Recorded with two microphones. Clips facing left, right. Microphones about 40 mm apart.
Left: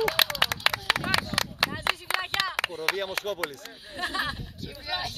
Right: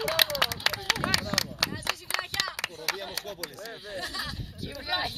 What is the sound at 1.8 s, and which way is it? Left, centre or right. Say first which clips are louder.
Clapping: left 4 dB; left.